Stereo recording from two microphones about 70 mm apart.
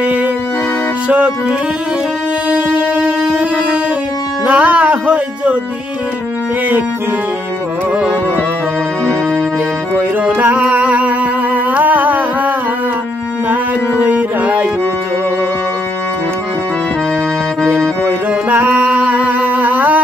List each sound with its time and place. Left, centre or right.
0.0 s music: right
2.5 s a sound: right
4.5 s speech: centre
9.9 s music: right
17.6 s music: right
18.6 s music: centre